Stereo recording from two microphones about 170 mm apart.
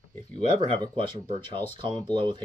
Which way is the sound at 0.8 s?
30° right (ahead or behind).